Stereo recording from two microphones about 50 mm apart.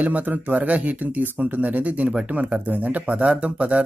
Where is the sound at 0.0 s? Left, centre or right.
Right.